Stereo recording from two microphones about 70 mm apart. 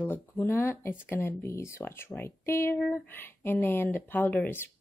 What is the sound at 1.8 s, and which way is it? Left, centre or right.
A woman's voice, left.